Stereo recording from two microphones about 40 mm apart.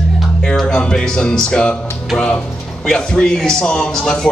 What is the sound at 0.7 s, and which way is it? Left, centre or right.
A man's voice, centre.